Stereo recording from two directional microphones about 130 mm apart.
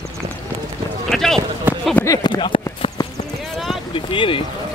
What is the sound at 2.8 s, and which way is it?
Clip-clop, 40° left (ahead or behind).